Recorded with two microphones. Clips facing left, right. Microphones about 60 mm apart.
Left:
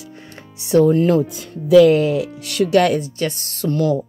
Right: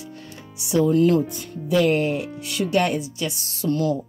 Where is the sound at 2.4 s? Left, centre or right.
Left.